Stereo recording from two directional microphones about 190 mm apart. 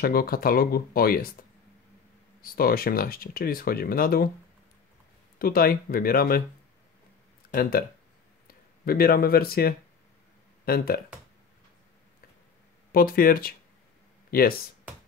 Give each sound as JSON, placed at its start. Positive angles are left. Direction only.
{"t": 0.0, "sound": "speech", "side_deg": 50}
{"t": 2.4, "sound": "speech", "side_deg": 50}
{"t": 5.4, "sound": "speech", "side_deg": 50}
{"t": 7.4, "sound": "a sound", "side_deg": 55}
{"t": 8.5, "sound": "speech", "side_deg": 50}
{"t": 12.9, "sound": "speech", "side_deg": 50}